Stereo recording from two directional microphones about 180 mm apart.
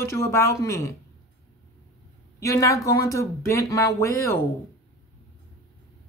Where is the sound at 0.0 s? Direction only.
15° left (ahead or behind).